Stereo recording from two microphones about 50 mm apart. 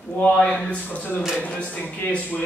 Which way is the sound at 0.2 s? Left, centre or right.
Left.